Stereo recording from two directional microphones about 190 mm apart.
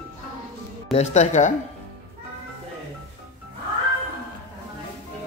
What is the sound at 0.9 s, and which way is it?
Speech, 35° left (ahead or behind).